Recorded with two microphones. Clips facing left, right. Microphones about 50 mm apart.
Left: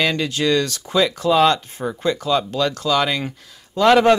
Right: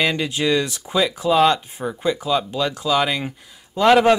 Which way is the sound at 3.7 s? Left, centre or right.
Centre.